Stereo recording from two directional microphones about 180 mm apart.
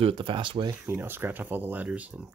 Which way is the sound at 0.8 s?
10° right (ahead or behind).